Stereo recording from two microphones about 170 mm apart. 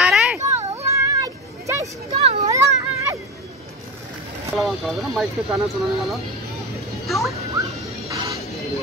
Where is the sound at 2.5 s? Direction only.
20° right (ahead or behind).